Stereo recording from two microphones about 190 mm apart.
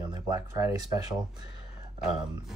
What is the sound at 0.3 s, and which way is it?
Speech, 15° right (ahead or behind).